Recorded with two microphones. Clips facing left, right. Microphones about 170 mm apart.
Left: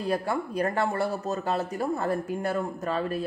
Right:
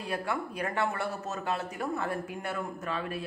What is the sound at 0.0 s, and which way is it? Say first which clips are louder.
Speech: left 5 dB; 40° left (ahead or behind).